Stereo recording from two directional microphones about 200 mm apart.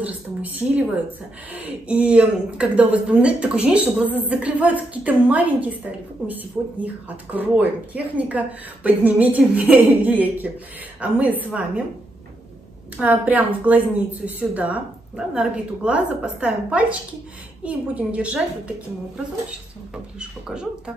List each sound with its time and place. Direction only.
0.0 s a woman's voice: 10° right (ahead or behind)
12.9 s a woman's voice: 5° right (ahead or behind)
20.2 s speech: 5° right (ahead or behind)